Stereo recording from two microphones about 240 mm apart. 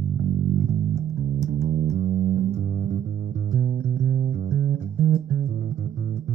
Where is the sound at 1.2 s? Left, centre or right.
Right.